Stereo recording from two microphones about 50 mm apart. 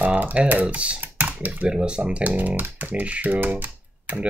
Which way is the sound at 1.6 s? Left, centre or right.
Centre.